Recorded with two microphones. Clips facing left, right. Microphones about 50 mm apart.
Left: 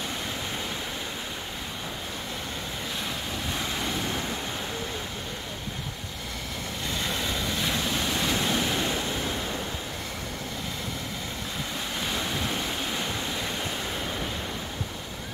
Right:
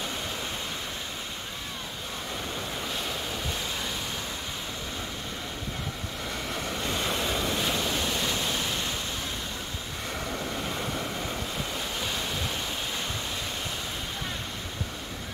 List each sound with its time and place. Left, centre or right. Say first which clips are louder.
7.1 s vehicle: right 1 dB; right
7.4 s waves: even; centre
7.9 s waves: left 1 dB; centre
8.3 s waves: left 4 dB; left